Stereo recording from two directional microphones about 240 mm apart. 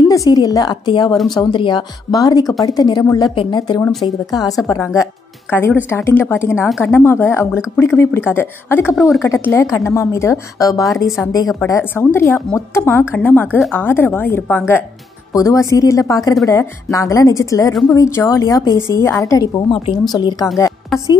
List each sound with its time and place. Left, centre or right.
0.1 s a woman's voice: centre
20.9 s a woman's voice: centre